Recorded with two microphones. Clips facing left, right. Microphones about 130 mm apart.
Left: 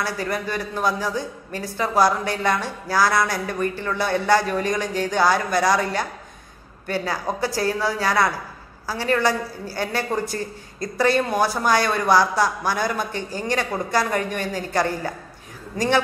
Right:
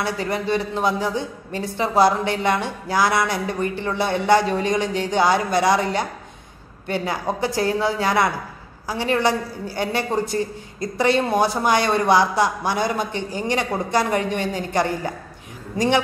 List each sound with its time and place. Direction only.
0.0 s a woman's voice: 25° right (ahead or behind)